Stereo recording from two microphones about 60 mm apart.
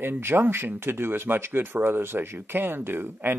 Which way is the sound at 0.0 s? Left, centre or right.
Right.